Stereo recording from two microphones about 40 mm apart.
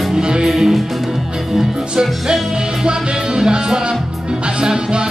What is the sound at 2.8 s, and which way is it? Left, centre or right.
Music, centre.